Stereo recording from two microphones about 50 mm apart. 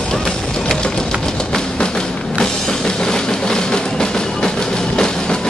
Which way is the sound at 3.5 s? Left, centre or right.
Centre.